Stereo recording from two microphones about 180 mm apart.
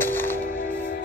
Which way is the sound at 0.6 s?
55° left (ahead or behind).